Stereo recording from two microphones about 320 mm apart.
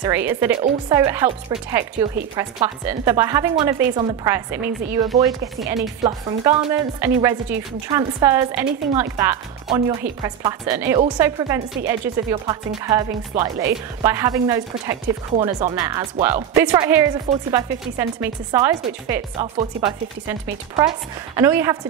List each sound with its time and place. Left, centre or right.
0.0 s speech: centre
0.5 s speech: centre
5.6 s music: centre
6.0 s speech: centre
21.4 s speech: centre